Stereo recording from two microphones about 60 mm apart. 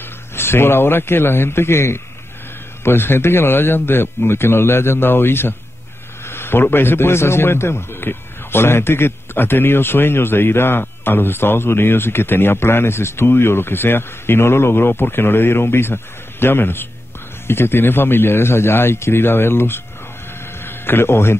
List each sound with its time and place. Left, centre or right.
0.4 s a man's voice: left